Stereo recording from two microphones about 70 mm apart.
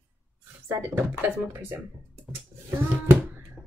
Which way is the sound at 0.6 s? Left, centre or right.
Right.